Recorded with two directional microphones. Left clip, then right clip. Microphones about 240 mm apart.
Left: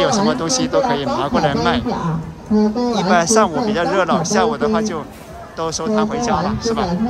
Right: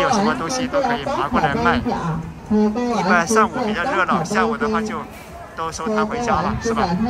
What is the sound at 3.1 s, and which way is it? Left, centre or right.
Speech, centre.